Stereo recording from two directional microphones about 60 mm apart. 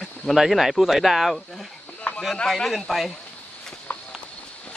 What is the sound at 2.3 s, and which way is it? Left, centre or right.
Speech, centre.